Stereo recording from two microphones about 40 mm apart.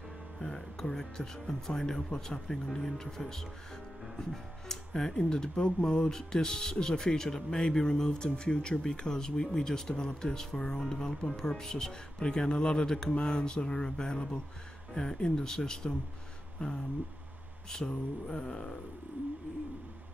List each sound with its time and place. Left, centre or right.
0.4 s speech: centre
4.6 s speech: centre
16.6 s speech: left